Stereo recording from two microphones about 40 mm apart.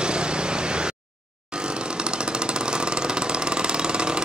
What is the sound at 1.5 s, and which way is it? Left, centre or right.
Chainsaw, right.